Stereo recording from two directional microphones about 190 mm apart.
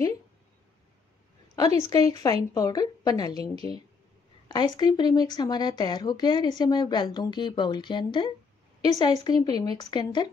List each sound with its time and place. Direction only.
1.8 s speech: 20° left (ahead or behind)